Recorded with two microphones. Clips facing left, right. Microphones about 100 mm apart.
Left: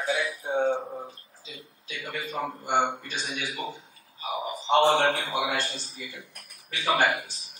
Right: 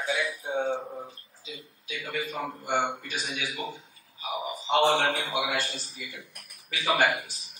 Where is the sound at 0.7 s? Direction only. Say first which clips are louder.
Left 2 dB; 15° left (ahead or behind).